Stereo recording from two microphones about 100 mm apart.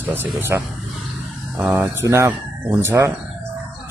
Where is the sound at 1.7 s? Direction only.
25° right (ahead or behind).